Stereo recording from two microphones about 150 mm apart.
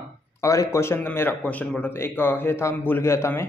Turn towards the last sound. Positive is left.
turn(degrees=15)  # may be behind; listen again after turning